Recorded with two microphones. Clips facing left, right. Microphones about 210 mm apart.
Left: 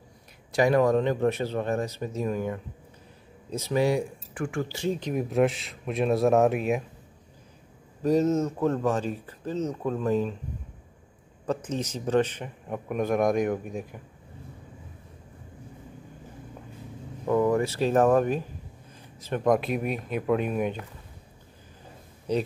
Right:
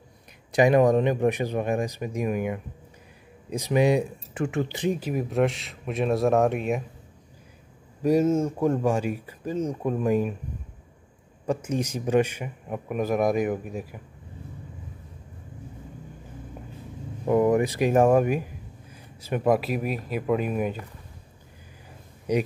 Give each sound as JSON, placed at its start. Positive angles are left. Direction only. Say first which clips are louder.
{"t": 0.5, "sound": "speech", "louder": "right 3 dB", "side_deg": -20}
{"t": 5.1, "sound": "a man's voice", "louder": "left 3 dB", "side_deg": 0}
{"t": 8.0, "sound": "speech", "louder": "right 2 dB", "side_deg": -10}
{"t": 11.4, "sound": "a man's voice", "louder": "right 3 dB", "side_deg": -10}
{"t": 17.3, "sound": "speech", "louder": "right 2 dB", "side_deg": -15}
{"t": 22.3, "sound": "speech", "louder": "right 2 dB", "side_deg": -15}